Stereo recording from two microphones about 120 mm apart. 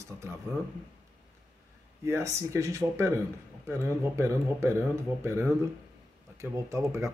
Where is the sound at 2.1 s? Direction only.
25° right (ahead or behind).